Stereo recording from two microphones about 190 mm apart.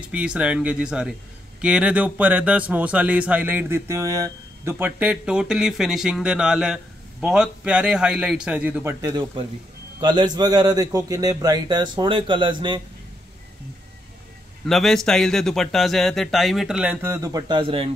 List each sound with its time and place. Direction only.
0.0 s a man's voice: 5° right (ahead or behind)
9.0 s a man's voice: 25° right (ahead or behind)
14.7 s speech: centre (ahead or behind); by 17.8 s 25° right (ahead or behind)